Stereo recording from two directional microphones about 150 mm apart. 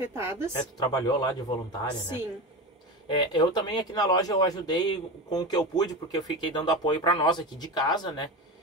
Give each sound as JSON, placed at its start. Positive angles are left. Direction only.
{"t": 0.0, "sound": "a woman's voice", "side_deg": -15}
{"t": 0.5, "sound": "speech", "side_deg": 30}
{"t": 3.1, "sound": "speech", "side_deg": 30}